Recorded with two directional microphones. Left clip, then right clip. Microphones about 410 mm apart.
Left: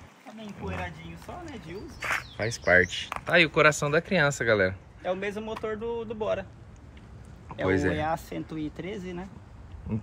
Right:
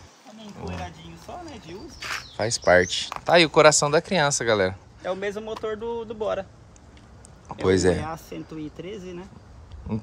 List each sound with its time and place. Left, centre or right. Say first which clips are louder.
0.4 s speech: even; centre
5.0 s speech: right 2 dB; right
7.4 s speech: right 6 dB; centre